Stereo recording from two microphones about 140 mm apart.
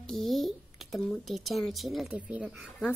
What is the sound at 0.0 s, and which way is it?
A woman's voice, centre (ahead or behind).